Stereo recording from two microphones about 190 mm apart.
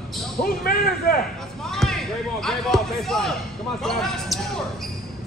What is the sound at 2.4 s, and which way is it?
Speech, centre (ahead or behind).